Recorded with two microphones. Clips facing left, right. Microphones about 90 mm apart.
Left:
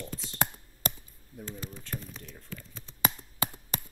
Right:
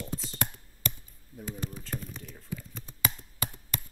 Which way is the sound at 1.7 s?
Centre (ahead or behind).